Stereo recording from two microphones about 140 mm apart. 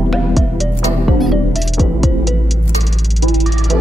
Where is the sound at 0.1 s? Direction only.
Centre (ahead or behind).